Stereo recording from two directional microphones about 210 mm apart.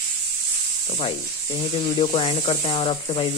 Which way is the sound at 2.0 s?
25° left (ahead or behind).